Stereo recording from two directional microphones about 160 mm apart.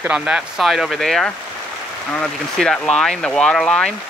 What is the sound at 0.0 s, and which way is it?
Speech, 5° right (ahead or behind).